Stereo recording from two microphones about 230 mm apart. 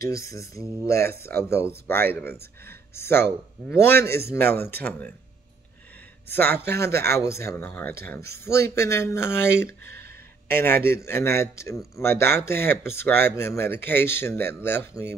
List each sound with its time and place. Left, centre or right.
0.0 s speech: right
0.8 s speech: centre
6.3 s speech: centre